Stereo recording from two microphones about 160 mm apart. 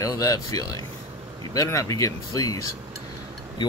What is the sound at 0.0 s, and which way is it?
Speech, 20° left (ahead or behind).